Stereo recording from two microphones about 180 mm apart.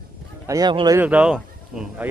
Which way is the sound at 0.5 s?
20° right (ahead or behind).